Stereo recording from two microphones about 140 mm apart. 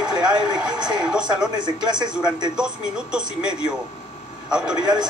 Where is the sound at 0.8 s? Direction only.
5° right (ahead or behind).